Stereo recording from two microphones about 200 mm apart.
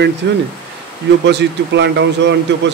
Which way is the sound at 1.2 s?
60° right (ahead or behind).